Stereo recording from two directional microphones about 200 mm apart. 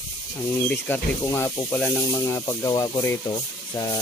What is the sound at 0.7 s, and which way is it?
Speech, 10° left (ahead or behind).